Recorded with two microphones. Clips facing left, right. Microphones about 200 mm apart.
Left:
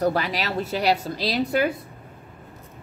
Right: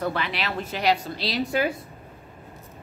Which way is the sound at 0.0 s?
40° left (ahead or behind).